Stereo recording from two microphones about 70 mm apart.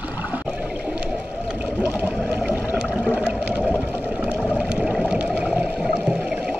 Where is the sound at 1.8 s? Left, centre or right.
Right.